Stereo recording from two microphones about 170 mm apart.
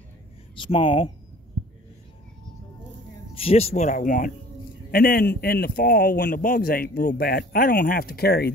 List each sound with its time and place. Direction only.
0.6 s speech: 30° left (ahead or behind)
3.3 s speech: 35° left (ahead or behind)
4.9 s a man's voice: 60° left (ahead or behind)